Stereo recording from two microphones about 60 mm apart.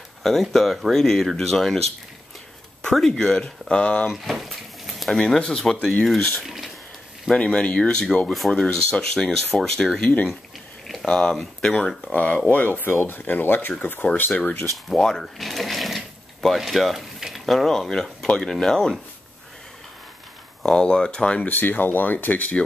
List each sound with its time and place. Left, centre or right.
0.2 s speech: centre
2.9 s speech: centre; by 4.1 s left
4.1 s a sound: centre
5.2 s speech: centre
6.4 s a sound: centre
7.3 s speech: centre
8.3 s speech: centre
12.0 s speech: left
14.9 s speech: centre
15.3 s a sound: centre
18.4 s speech: centre
20.6 s speech: centre
21.5 s speech: left